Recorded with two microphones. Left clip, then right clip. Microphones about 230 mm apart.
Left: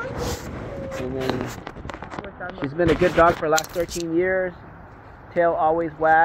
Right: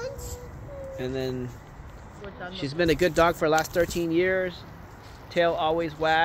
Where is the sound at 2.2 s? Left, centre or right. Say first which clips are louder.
Even; right.